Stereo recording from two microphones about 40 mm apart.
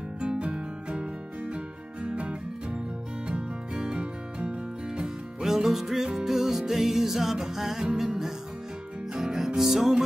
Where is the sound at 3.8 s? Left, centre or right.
Right.